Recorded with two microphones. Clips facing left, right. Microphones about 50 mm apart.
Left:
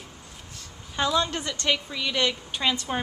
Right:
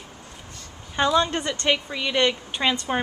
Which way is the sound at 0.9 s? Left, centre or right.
Centre.